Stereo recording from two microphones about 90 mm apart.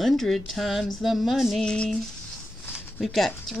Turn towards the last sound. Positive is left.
turn(degrees=0)  # may be behind; listen again after turning